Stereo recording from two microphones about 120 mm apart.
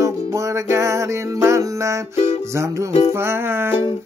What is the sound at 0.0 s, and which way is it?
Music, 25° right (ahead or behind).